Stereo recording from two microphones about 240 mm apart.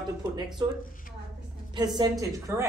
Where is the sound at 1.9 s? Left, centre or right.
Centre.